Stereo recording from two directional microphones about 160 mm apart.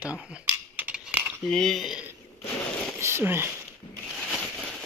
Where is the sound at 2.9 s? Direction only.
15° right (ahead or behind).